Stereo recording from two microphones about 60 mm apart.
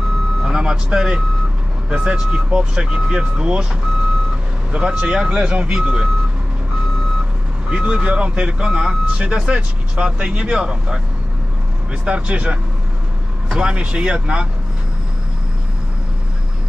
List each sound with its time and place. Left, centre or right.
0.4 s speech: centre
4.7 s speech: centre
7.7 s speech: centre
12.0 s speech: centre